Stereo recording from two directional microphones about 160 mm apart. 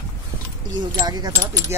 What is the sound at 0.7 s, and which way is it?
Speech, 25° right (ahead or behind).